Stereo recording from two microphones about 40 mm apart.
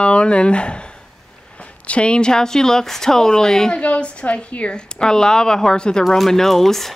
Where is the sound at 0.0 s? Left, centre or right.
Left.